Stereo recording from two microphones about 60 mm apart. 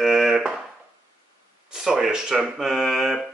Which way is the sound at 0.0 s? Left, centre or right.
Centre.